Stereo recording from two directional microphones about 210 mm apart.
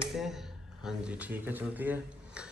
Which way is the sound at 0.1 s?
Centre (ahead or behind).